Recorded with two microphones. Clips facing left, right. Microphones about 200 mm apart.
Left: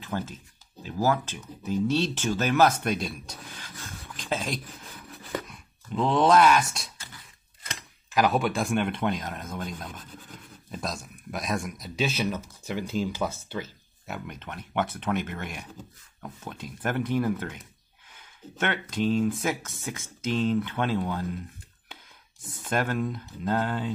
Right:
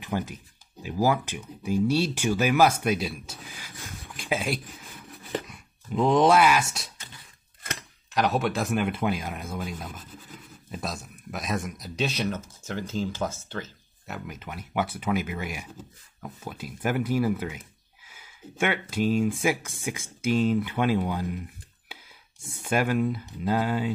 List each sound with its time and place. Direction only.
0.0 s speech: 15° right (ahead or behind)
8.1 s speech: centre (ahead or behind)
12.6 s speech: 10° left (ahead or behind)
14.1 s speech: 5° right (ahead or behind)
22.6 s speech: 10° right (ahead or behind)